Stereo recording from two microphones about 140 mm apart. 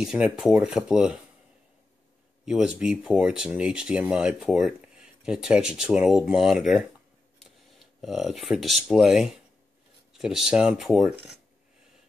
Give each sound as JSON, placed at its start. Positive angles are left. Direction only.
{"t": 0.0, "sound": "speech", "side_deg": -5}
{"t": 2.4, "sound": "speech", "side_deg": -5}
{"t": 8.0, "sound": "speech", "side_deg": 0}